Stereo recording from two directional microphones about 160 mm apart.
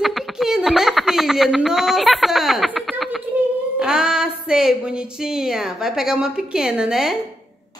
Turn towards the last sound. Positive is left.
turn(degrees=-5)  # may be behind; listen again after turning